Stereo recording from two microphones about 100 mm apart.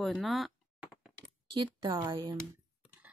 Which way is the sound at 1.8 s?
45° right (ahead or behind).